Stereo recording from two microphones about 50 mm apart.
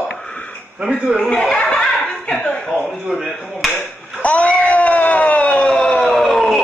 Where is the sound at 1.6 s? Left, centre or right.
Left.